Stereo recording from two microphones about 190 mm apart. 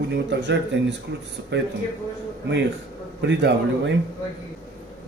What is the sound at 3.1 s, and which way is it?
Speech, 65° right (ahead or behind).